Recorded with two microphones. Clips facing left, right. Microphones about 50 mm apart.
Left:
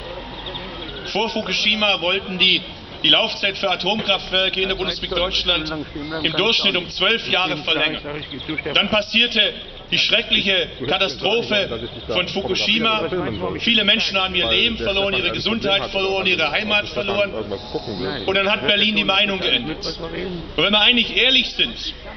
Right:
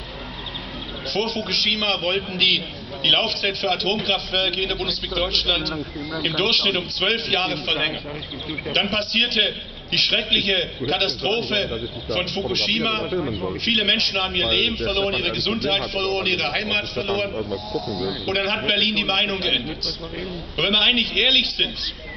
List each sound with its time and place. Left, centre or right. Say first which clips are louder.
1.1 s a man's voice: left 3 dB; left
17.7 s speech: left 1 dB; centre
18.3 s a man's voice: left 5 dB; left